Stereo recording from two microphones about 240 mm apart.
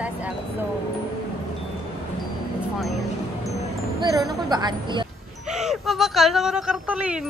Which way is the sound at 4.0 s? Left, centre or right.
Centre.